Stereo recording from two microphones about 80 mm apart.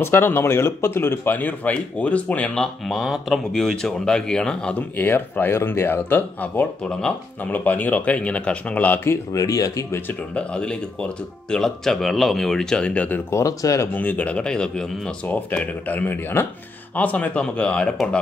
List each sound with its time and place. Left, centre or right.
0.0 s speech: left
9.4 s speech: left
10.3 s speech: centre
13.3 s speech: left
13.9 s speech: left
15.2 s speech: centre